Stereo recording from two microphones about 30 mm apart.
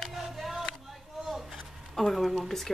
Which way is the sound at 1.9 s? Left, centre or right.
Centre.